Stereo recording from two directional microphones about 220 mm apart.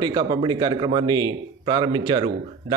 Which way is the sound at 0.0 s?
20° right (ahead or behind).